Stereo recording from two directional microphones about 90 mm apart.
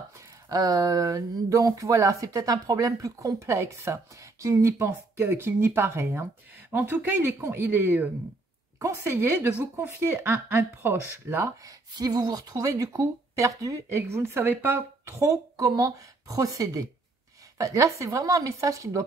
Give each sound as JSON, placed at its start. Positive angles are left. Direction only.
{"t": 0.5, "sound": "speech", "side_deg": -45}
{"t": 11.9, "sound": "speech", "side_deg": -45}